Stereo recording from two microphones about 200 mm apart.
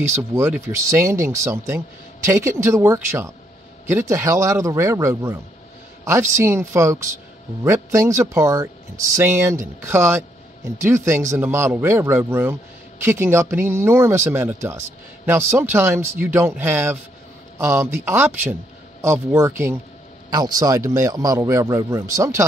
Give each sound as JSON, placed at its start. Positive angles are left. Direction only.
{"t": 0.1, "sound": "speech", "side_deg": -10}